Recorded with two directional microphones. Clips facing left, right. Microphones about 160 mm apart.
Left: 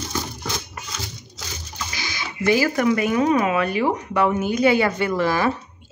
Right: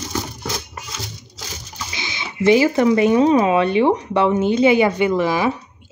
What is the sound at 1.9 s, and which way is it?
Speech, 20° right (ahead or behind).